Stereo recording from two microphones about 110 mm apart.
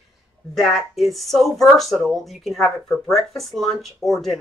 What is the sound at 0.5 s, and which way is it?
Speech, centre (ahead or behind).